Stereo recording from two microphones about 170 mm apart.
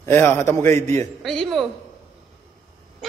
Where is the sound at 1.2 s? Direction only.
Centre (ahead or behind).